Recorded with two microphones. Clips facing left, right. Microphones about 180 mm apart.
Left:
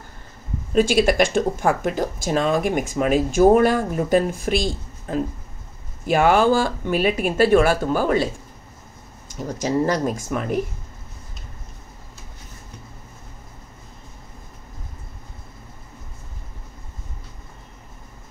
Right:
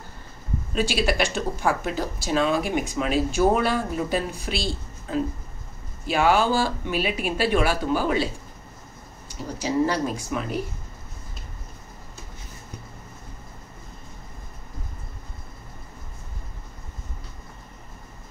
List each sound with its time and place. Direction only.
0.7 s speech: 45° left (ahead or behind)
6.0 s speech: 50° left (ahead or behind)
9.6 s speech: 45° left (ahead or behind)